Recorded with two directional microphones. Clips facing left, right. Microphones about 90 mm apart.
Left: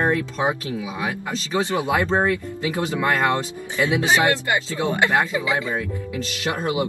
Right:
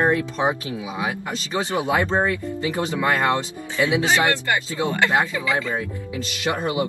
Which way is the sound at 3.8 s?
20° left (ahead or behind).